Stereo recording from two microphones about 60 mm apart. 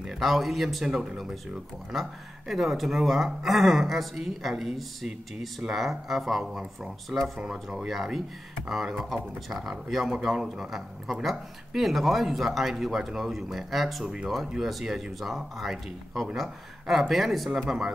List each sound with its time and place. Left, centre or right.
0.2 s speech: centre